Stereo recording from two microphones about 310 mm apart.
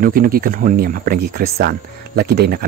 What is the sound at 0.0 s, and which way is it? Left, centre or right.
Speech, right.